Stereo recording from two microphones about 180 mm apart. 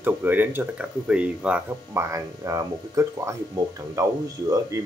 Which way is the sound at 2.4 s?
20° right (ahead or behind).